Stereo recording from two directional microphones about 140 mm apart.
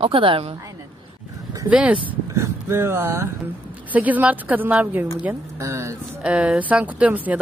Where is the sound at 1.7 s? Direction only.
10° right (ahead or behind).